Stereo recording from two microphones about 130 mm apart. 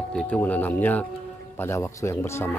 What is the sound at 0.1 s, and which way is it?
Speech, 10° left (ahead or behind).